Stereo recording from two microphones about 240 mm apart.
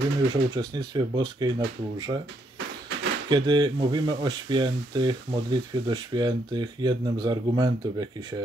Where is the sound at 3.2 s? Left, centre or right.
Centre.